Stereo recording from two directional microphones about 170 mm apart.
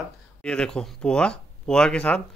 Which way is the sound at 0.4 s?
5° left (ahead or behind).